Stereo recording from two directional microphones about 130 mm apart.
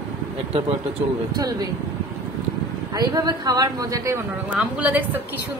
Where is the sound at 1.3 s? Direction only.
30° right (ahead or behind).